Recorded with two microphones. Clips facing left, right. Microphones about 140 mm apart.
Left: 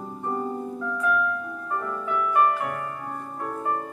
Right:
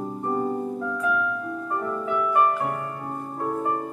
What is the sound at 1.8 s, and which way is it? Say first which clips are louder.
Music: right 2 dB; 30° right (ahead or behind).